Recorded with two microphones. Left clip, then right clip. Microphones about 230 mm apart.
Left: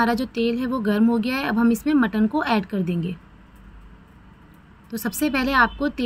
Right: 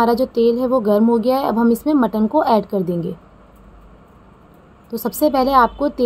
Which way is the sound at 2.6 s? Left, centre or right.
Left.